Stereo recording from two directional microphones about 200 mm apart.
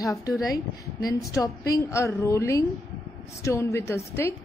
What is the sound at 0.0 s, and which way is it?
A woman's voice, 15° left (ahead or behind).